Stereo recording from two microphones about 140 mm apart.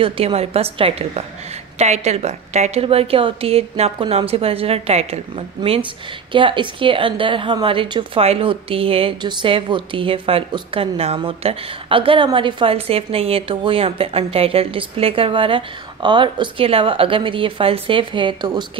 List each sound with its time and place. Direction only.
0.0 s a woman's voice: 45° right (ahead or behind)
6.3 s a woman's voice: 35° right (ahead or behind)